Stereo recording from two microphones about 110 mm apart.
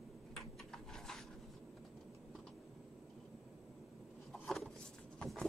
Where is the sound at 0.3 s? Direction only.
5° left (ahead or behind).